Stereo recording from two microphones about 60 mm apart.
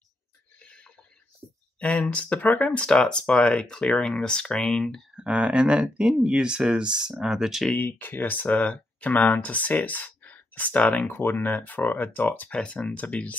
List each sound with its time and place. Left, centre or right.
0.6 s a sound: centre
1.8 s speech: left
5.1 s speech: centre
7.7 s speech: left
11.1 s speech: left
12.4 s speech: left